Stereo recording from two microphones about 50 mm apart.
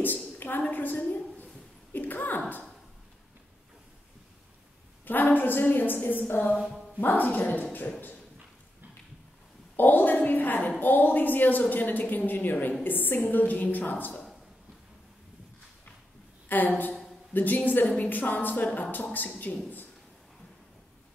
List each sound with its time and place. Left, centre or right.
0.4 s a woman's voice: left
5.0 s a woman's voice: left
9.8 s a woman's voice: left
16.4 s a woman's voice: left